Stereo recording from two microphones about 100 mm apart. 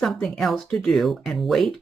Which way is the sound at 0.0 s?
5° left (ahead or behind).